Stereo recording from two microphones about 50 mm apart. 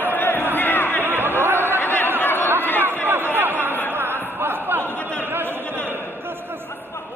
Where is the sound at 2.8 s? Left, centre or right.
Right.